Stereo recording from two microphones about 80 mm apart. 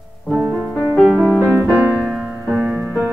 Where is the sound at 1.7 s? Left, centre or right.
Centre.